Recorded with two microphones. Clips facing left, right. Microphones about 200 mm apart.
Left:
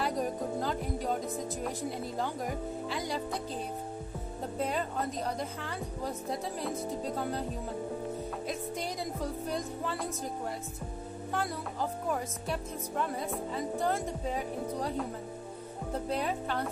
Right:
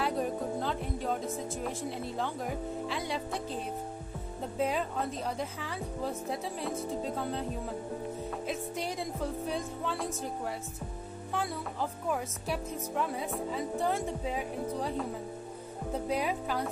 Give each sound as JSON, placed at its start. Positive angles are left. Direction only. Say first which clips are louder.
{"t": 0.0, "sound": "music", "louder": "right 1 dB", "side_deg": 0}
{"t": 1.6, "sound": "speech", "louder": "even", "side_deg": 0}
{"t": 4.6, "sound": "speech", "louder": "right 2 dB", "side_deg": 0}
{"t": 8.5, "sound": "music", "louder": "right 2 dB", "side_deg": -5}
{"t": 9.8, "sound": "speech", "louder": "right 1 dB", "side_deg": 0}